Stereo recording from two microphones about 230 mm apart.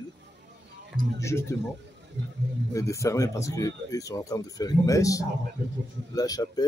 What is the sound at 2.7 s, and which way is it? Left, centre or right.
Speech, centre.